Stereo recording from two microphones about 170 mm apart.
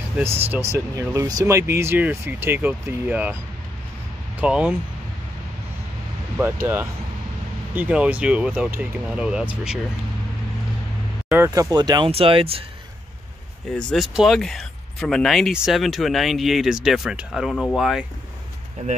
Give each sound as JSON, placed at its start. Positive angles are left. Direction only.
{"t": 0.2, "sound": "speech", "side_deg": -15}
{"t": 4.4, "sound": "speech", "side_deg": -5}
{"t": 7.7, "sound": "speech", "side_deg": -10}
{"t": 11.2, "sound": "speech", "side_deg": -15}
{"t": 13.7, "sound": "speech", "side_deg": 0}